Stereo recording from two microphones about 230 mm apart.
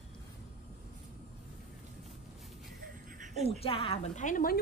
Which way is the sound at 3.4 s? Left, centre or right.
Left.